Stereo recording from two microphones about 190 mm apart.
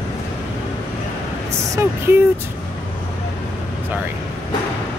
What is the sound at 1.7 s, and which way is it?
Speech, 15° right (ahead or behind).